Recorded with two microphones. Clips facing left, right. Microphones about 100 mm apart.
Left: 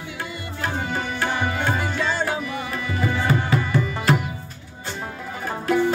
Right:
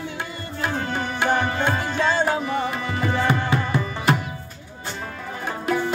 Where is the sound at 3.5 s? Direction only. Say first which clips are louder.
Left 1 dB; 25° right (ahead or behind).